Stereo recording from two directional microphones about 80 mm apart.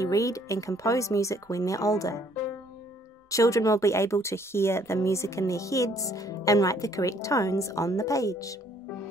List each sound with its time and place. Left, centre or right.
0.0 s speech: left
3.3 s speech: left